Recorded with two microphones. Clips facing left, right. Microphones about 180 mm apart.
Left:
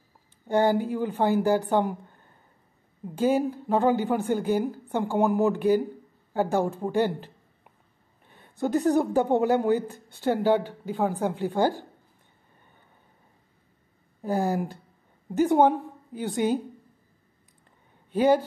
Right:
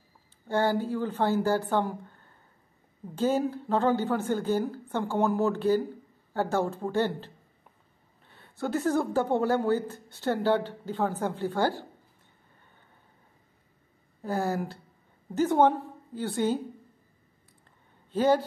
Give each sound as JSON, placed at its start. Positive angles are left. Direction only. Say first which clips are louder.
{"t": 0.5, "sound": "speech", "louder": "left 4 dB", "side_deg": 15}
{"t": 14.2, "sound": "a woman's voice", "louder": "left 3 dB", "side_deg": 15}
{"t": 18.1, "sound": "speech", "louder": "left 3 dB", "side_deg": 15}